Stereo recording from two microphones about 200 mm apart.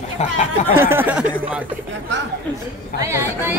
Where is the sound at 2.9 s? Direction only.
15° right (ahead or behind).